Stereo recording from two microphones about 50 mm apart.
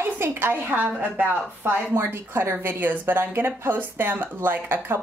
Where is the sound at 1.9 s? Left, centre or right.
Right.